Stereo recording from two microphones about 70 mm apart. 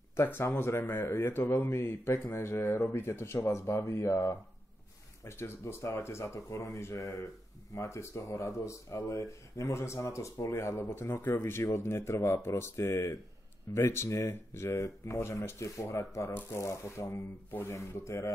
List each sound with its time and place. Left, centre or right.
0.1 s speech: left